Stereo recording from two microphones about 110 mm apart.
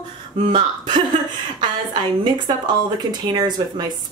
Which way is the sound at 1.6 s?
45° right (ahead or behind).